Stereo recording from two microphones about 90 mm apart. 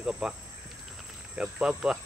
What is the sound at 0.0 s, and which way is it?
Speech, 10° right (ahead or behind).